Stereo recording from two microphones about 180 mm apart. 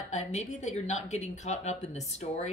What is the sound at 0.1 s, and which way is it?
A woman's voice, 40° left (ahead or behind).